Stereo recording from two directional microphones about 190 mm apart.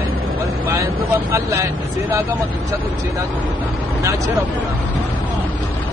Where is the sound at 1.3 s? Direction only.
15° right (ahead or behind).